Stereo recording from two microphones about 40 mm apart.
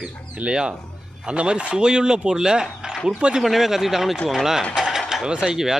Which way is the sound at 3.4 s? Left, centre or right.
Centre.